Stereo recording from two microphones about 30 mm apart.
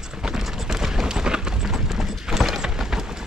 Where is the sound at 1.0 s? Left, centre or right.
Right.